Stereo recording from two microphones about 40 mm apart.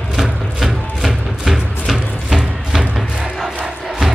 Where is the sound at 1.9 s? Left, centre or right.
Centre.